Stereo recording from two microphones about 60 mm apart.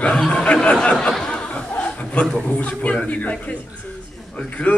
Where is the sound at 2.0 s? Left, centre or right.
Left.